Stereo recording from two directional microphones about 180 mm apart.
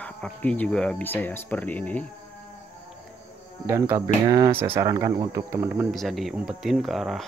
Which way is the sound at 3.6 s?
15° right (ahead or behind).